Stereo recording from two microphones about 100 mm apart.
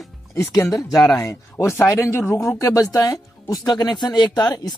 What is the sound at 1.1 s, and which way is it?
Speech, 30° left (ahead or behind).